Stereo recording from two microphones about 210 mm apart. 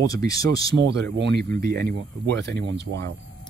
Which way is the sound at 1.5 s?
45° right (ahead or behind).